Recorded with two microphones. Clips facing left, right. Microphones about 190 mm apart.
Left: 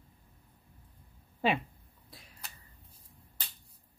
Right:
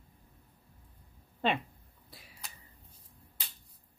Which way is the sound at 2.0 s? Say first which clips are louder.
Even; centre (ahead or behind).